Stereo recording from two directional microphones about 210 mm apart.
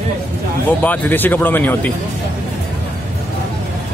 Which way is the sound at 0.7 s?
10° left (ahead or behind).